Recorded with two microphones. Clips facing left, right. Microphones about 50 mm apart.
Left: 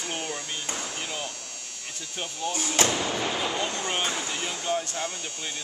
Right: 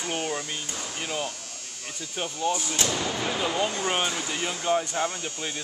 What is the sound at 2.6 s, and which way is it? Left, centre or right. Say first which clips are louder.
Speech: left 3 dB; left.